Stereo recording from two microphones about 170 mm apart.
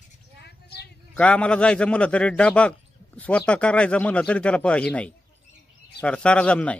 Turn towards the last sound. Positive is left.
turn(degrees=5)  # may be behind; listen again after turning